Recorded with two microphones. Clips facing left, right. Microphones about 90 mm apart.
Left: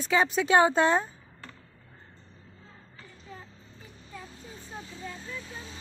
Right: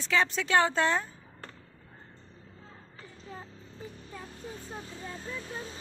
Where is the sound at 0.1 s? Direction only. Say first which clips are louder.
Left 3 dB; 15° left (ahead or behind).